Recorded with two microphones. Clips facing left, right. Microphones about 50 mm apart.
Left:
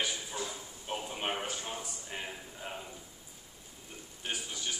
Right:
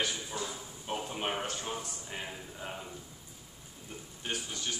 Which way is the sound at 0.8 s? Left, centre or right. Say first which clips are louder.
Right 1 dB; centre.